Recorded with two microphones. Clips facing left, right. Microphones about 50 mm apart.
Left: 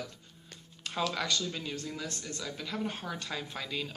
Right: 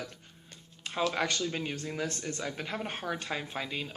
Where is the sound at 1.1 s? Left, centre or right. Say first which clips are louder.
Right 2 dB; right.